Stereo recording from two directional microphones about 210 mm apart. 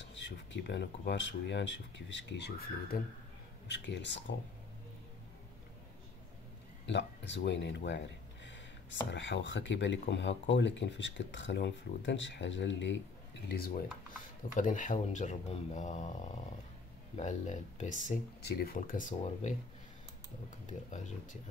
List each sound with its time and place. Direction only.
0.0 s speech: 60° left (ahead or behind)
6.9 s speech: 55° left (ahead or behind)
9.1 s speech: 60° left (ahead or behind)
13.5 s speech: 45° left (ahead or behind)
17.2 s speech: 35° left (ahead or behind)
20.9 s speech: 35° left (ahead or behind)